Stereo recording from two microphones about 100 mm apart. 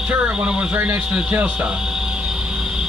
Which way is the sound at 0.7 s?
25° right (ahead or behind).